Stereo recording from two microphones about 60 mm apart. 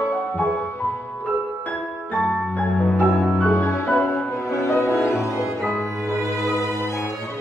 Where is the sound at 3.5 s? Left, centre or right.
Left.